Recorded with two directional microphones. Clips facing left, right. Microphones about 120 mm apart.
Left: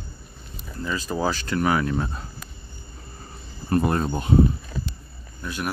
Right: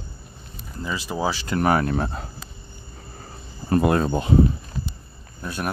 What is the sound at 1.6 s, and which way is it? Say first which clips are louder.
Speech: right 3 dB; 45° right (ahead or behind).